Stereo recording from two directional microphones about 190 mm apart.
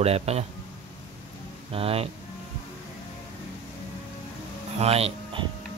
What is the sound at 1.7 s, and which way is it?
Speech, 30° right (ahead or behind).